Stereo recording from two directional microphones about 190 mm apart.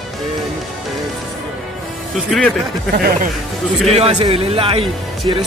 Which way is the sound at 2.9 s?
50° right (ahead or behind).